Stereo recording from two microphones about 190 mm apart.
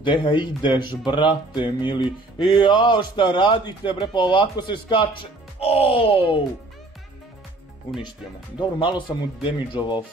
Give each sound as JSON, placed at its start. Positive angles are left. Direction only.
{"t": 0.0, "sound": "speech", "side_deg": 25}
{"t": 5.6, "sound": "music", "side_deg": 30}
{"t": 8.5, "sound": "speech", "side_deg": 25}